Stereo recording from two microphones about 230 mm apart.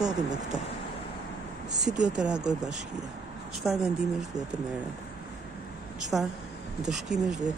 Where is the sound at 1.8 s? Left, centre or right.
Right.